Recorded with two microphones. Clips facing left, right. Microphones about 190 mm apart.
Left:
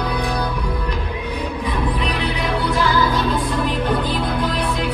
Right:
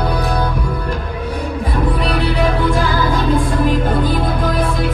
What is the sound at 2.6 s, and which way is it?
Music, 45° right (ahead or behind).